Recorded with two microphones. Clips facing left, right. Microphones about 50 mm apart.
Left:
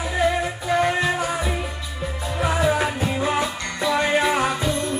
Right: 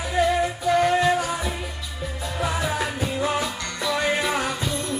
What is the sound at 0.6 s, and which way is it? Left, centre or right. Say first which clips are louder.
Music: right 1 dB; centre.